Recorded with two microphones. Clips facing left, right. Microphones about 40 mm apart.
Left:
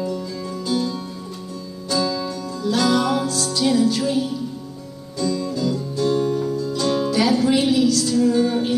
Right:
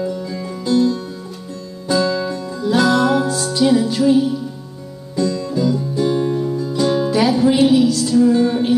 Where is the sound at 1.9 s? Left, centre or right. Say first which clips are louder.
Right 5 dB; right.